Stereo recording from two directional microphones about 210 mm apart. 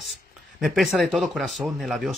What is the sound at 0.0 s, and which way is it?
Speech, centre (ahead or behind).